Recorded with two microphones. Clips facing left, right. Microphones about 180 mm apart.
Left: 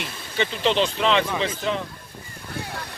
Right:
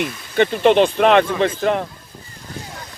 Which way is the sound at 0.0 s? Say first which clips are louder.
Right 9 dB; 55° right (ahead or behind).